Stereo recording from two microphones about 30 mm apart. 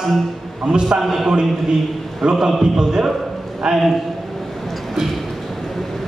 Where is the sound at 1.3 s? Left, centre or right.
Right.